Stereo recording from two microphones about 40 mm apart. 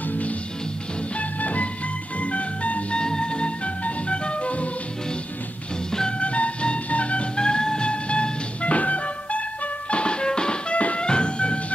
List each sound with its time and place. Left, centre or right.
0.0 s music: left
3.0 s music: left
5.9 s music: centre
6.1 s music: left
10.7 s music: left